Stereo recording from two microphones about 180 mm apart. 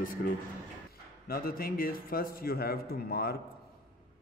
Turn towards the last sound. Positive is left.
turn(degrees=55)  # may be behind; listen again after turning